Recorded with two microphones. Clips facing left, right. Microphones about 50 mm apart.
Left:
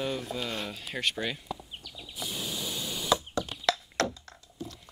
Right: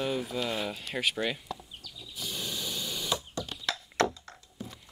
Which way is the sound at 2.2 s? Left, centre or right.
Centre.